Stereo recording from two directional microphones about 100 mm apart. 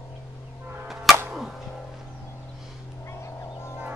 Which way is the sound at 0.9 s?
5° right (ahead or behind).